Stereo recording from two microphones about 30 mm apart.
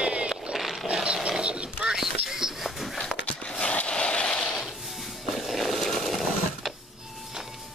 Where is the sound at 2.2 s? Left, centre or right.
Centre.